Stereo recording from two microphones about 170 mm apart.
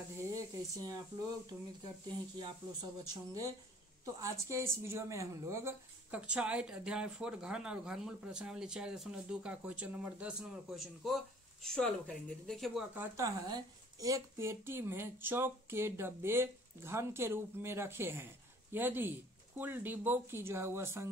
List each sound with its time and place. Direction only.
0.4 s speech: 20° right (ahead or behind)
2.3 s a woman's voice: 20° right (ahead or behind); by 12.8 s centre (ahead or behind)
12.9 s speech: 15° right (ahead or behind)